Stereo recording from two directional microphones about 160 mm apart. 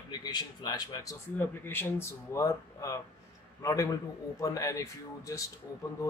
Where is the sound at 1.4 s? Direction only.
15° left (ahead or behind).